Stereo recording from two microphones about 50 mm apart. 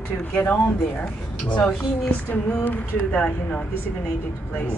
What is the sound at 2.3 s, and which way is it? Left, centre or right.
Speech, left.